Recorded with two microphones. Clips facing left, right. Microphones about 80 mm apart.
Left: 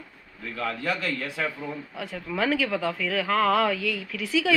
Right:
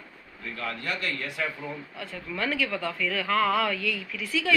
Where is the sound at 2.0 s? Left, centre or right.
Left.